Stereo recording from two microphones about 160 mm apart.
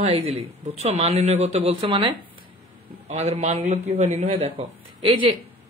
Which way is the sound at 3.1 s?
45° right (ahead or behind).